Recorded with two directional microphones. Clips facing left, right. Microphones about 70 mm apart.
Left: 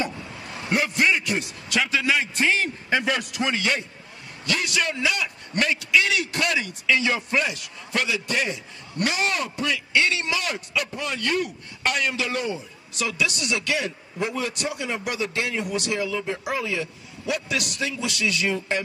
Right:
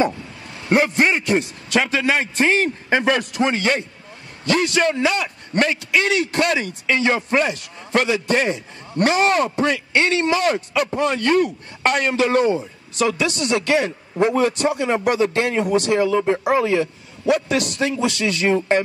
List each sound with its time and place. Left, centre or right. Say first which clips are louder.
0.7 s a man's voice: right 5 dB; right